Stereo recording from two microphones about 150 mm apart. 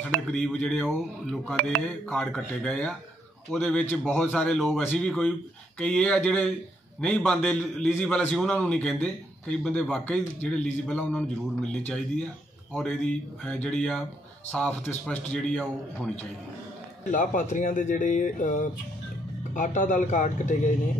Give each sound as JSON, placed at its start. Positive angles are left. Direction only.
{"t": 0.3, "sound": "a man's voice", "side_deg": 5}
{"t": 17.1, "sound": "speech", "side_deg": 60}